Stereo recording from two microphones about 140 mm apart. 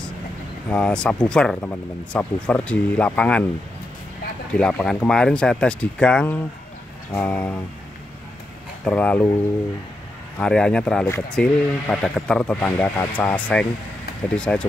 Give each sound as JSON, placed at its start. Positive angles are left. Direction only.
{"t": 0.7, "sound": "speech", "side_deg": 10}
{"t": 4.6, "sound": "speech", "side_deg": 5}
{"t": 8.8, "sound": "speech", "side_deg": 10}
{"t": 10.3, "sound": "speech", "side_deg": 5}
{"t": 11.1, "sound": "speech", "side_deg": 20}
{"t": 11.3, "sound": "speech", "side_deg": 5}